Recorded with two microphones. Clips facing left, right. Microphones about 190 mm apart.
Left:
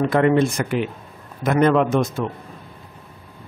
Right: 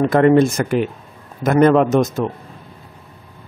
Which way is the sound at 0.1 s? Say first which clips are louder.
Right 6 dB; 45° right (ahead or behind).